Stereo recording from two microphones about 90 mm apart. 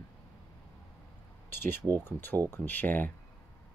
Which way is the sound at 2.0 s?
20° left (ahead or behind).